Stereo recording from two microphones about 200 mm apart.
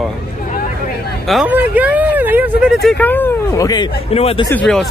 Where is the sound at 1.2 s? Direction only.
5° right (ahead or behind); by 4.5 s 30° left (ahead or behind).